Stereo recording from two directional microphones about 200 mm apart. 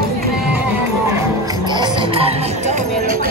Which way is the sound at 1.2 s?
20° right (ahead or behind).